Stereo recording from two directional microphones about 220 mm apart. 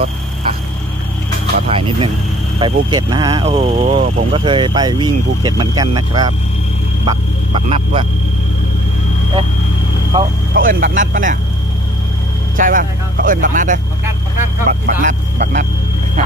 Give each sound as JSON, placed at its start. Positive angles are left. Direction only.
{"t": 1.7, "sound": "speech", "side_deg": -25}
{"t": 10.1, "sound": "speech", "side_deg": -20}
{"t": 10.5, "sound": "speech", "side_deg": -40}
{"t": 12.5, "sound": "speech", "side_deg": -40}